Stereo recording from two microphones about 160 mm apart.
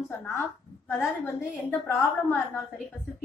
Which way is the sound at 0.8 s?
15° left (ahead or behind).